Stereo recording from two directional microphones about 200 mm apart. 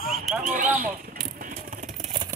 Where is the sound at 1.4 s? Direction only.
40° right (ahead or behind).